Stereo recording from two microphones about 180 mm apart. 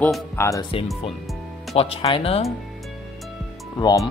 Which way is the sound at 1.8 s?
30° left (ahead or behind).